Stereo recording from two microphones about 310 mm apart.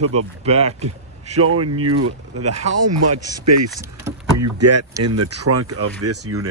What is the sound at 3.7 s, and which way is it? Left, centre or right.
Speech, centre.